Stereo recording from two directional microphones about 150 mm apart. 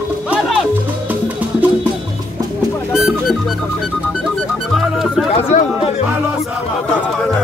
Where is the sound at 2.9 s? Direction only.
Centre (ahead or behind).